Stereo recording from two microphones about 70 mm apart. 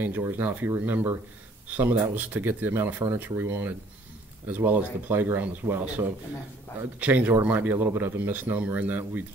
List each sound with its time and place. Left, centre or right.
0.3 s speech: right
4.5 s speech: right